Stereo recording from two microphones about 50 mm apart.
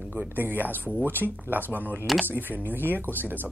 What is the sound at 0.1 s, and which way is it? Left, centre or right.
Speech, right.